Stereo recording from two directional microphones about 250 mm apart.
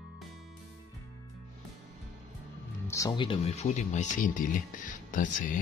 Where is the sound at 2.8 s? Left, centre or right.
Centre; by 5.5 s left.